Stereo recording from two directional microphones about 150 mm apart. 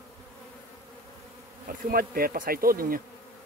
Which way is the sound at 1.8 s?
80° right.